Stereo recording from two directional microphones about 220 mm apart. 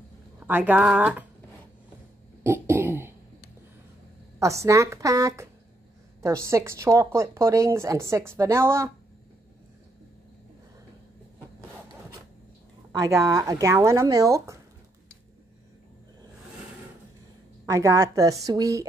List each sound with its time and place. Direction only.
0.5 s a woman's voice: 10° right (ahead or behind)
2.4 s cough: 10° right (ahead or behind)
4.4 s a woman's voice: 15° right (ahead or behind)
12.9 s a woman's voice: 15° right (ahead or behind)
17.6 s a woman's voice: 15° right (ahead or behind)